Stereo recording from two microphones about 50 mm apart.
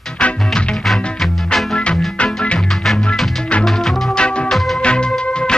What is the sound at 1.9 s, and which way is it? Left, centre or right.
Music, left.